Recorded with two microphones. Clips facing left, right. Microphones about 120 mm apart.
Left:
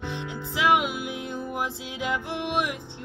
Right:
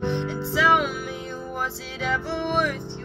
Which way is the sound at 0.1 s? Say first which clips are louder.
Right 7 dB; 15° left (ahead or behind).